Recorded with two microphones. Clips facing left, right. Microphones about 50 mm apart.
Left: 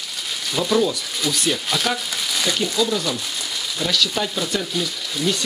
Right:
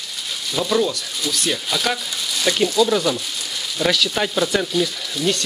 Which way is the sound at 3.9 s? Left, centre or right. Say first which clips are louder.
Right 2 dB; right.